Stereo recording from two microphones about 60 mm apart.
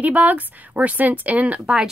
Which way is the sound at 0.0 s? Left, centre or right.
Right.